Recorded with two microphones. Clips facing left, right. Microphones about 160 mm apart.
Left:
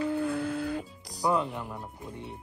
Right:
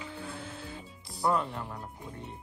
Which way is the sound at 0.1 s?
55° left (ahead or behind).